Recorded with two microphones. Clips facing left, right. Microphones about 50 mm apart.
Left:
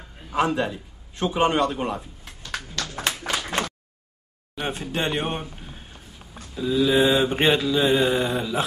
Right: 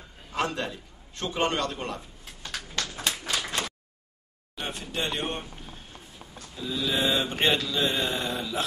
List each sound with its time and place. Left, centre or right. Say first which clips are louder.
0.3 s mantra: left 7 dB; centre
3.1 s a sound: left 5 dB; left
4.6 s a man's voice: left 5 dB; left
6.5 s mantra: left 9 dB; centre